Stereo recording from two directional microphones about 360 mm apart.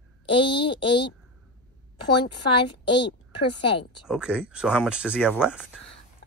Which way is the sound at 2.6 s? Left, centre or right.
Centre.